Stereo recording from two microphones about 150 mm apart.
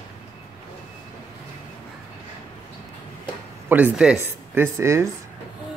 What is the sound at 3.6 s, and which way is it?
Speech, 10° right (ahead or behind).